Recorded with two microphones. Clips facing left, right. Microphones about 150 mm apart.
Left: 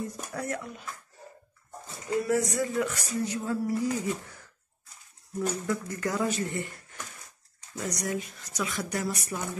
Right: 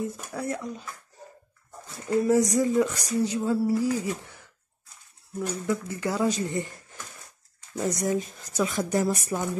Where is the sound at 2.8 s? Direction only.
40° right (ahead or behind).